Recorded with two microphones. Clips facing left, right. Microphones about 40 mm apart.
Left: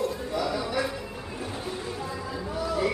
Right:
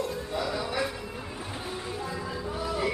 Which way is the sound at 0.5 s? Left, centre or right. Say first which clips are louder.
Left 1 dB; centre.